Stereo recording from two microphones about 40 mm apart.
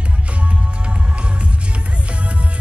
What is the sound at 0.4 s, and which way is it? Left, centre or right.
Music, right.